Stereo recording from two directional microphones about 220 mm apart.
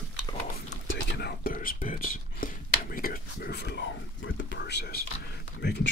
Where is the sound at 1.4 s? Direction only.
40° left (ahead or behind).